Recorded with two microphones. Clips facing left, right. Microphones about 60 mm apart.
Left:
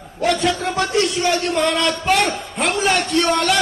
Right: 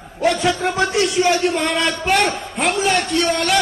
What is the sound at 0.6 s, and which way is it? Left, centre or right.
Music, centre.